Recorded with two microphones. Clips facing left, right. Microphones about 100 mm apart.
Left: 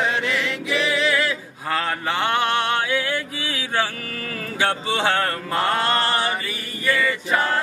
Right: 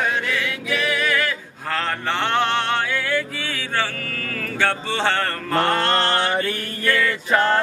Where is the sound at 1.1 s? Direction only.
10° left (ahead or behind).